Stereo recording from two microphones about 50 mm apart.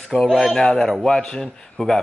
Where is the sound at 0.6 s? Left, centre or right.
Centre.